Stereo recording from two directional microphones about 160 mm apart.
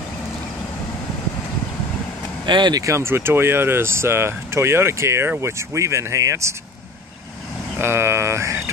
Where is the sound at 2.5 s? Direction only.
25° right (ahead or behind).